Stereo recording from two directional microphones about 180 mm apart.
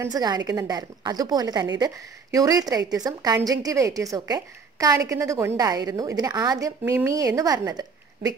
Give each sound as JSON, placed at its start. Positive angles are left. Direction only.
{"t": 0.0, "sound": "a woman's voice", "side_deg": -20}